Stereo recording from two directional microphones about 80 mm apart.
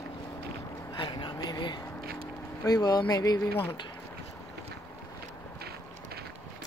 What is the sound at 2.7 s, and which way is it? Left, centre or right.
Speech, left.